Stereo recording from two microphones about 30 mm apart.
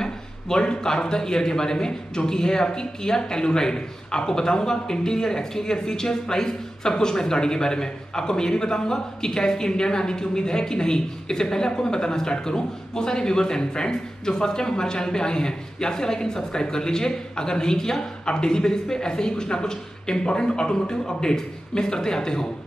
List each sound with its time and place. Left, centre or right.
0.0 s a man's voice: left